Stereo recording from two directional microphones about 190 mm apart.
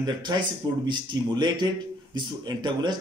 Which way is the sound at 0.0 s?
20° right (ahead or behind).